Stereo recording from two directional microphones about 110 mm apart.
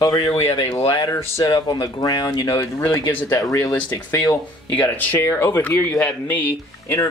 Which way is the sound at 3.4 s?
30° left (ahead or behind).